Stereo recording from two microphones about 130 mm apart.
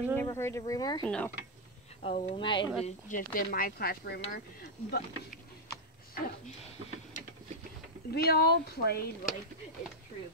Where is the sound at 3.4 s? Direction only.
90° left.